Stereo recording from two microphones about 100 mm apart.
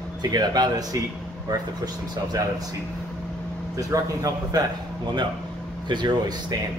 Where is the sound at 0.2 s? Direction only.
45° right (ahead or behind).